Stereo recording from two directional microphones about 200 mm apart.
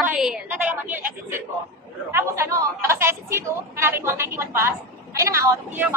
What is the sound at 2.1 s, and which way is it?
Chatter, 10° right (ahead or behind).